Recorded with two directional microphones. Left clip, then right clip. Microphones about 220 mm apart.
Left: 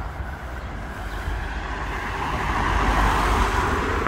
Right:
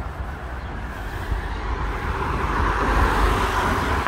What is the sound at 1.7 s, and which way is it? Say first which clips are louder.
Vehicle: even; 35° left (ahead or behind).